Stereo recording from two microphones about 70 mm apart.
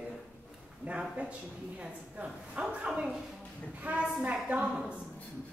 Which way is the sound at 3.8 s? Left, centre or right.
Right.